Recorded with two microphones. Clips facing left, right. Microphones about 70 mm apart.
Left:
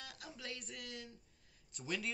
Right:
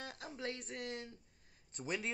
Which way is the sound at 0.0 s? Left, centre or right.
Right.